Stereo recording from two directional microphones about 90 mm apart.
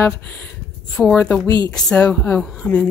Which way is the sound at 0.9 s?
10° left (ahead or behind).